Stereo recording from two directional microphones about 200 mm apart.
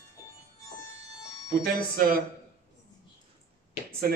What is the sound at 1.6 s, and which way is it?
Speech, 50° right (ahead or behind).